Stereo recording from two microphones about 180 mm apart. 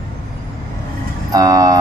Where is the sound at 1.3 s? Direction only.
20° right (ahead or behind).